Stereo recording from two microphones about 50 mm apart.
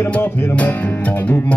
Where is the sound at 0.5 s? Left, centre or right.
Left.